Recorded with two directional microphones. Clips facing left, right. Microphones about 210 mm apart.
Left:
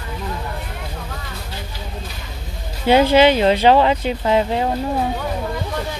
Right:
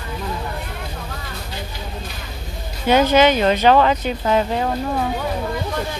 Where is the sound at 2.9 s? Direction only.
30° left (ahead or behind).